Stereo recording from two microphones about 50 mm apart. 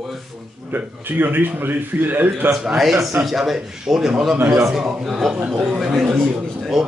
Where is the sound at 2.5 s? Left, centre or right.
Centre.